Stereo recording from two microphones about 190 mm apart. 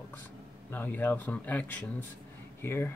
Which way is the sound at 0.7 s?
10° left (ahead or behind).